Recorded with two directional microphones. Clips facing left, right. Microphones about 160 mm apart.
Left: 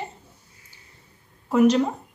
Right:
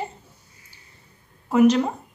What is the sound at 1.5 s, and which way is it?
Speech, centre (ahead or behind).